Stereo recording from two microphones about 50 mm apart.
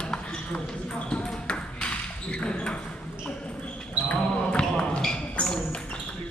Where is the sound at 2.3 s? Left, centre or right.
Left.